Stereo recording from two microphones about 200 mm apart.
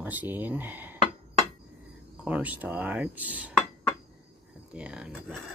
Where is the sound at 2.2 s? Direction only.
10° right (ahead or behind).